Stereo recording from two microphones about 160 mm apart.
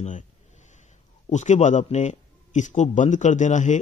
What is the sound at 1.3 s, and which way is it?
Speech, 50° left (ahead or behind).